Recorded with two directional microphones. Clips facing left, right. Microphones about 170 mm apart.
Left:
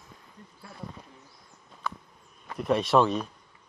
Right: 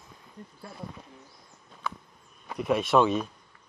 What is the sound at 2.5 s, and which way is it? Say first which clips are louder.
Speech: even; centre (ahead or behind).